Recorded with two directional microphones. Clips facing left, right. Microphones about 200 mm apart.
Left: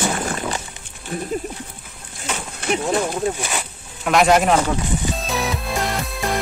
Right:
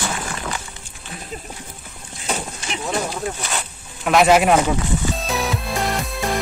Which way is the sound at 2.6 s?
55° left (ahead or behind).